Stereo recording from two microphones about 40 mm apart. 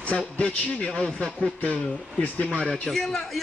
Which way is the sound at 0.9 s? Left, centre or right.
Centre.